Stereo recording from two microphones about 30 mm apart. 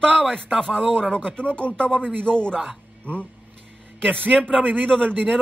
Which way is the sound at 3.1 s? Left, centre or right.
Right.